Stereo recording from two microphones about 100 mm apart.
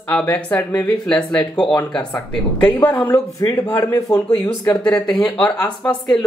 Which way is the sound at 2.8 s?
20° left (ahead or behind).